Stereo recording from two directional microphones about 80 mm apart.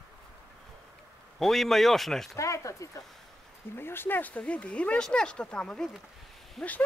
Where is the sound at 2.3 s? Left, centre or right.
Left.